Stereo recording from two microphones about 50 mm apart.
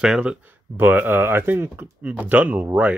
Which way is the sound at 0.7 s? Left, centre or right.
Right.